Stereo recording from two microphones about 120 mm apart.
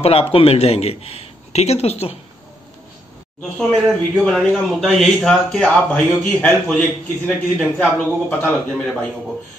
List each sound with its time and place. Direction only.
0.0 s a man's voice: 55° left (ahead or behind)
3.5 s speech: centre (ahead or behind)